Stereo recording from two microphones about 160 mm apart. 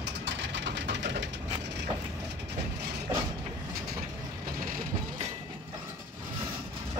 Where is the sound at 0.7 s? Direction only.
90° right.